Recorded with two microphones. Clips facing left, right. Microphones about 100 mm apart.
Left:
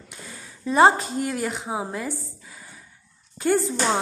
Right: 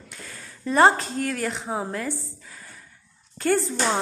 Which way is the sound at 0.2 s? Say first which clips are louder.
Left 1 dB; 10° left (ahead or behind).